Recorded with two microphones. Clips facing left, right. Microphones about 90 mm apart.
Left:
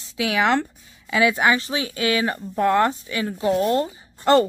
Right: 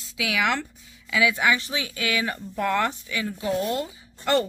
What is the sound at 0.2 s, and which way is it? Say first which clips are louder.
Speech: left 5 dB; 35° left (ahead or behind).